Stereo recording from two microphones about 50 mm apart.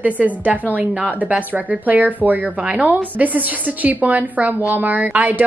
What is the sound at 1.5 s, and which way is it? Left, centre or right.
A woman's voice, right.